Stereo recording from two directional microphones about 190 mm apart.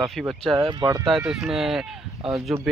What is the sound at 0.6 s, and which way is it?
Speech, 20° right (ahead or behind).